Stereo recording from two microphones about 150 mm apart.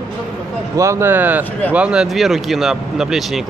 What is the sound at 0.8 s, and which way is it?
Speech, 15° right (ahead or behind).